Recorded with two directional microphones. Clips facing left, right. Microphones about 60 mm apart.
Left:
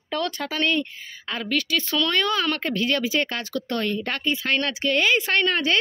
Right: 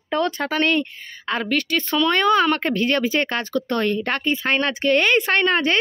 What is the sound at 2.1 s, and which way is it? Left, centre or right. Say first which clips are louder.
Speech: right 9 dB; right.